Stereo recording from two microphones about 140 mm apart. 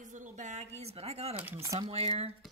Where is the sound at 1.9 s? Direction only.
45° right (ahead or behind).